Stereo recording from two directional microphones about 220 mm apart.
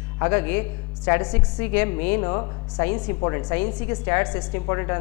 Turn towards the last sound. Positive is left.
turn(degrees=15)  # may be behind; listen again after turning